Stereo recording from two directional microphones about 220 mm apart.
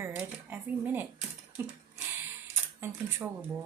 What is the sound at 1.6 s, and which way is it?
Speech, 10° right (ahead or behind).